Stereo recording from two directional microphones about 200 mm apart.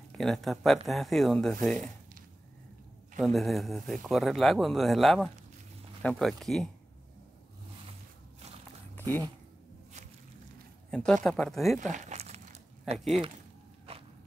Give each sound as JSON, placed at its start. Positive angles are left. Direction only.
{"t": 0.2, "sound": "speech", "side_deg": 0}
{"t": 3.2, "sound": "speech", "side_deg": 0}
{"t": 10.9, "sound": "speech", "side_deg": 5}
{"t": 11.9, "sound": "crumpling", "side_deg": -35}
{"t": 12.9, "sound": "speech", "side_deg": 0}
{"t": 13.9, "sound": "walk", "side_deg": -30}